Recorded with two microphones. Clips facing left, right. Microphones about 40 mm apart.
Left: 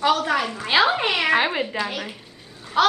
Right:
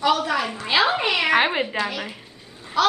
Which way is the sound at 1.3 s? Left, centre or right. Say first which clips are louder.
Right 1 dB; centre.